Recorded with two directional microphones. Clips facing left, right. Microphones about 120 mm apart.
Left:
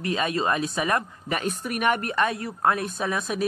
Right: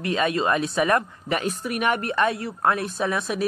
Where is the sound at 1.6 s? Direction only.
45° left (ahead or behind).